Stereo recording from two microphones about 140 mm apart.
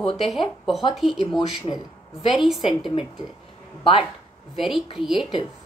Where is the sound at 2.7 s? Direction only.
35° left (ahead or behind).